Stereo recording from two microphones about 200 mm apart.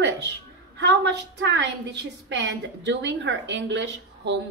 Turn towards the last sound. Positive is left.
turn(degrees=-60)  # may be behind; listen again after turning